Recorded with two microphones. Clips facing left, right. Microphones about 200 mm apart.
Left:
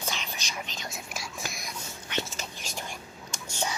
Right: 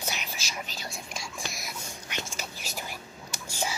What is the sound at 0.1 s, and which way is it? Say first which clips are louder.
Whispering: even; 5° right (ahead or behind).